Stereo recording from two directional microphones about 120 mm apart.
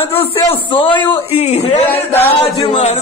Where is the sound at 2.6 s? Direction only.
65° left (ahead or behind).